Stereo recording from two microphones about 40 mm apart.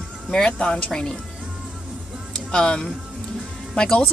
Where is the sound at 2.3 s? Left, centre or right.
Left.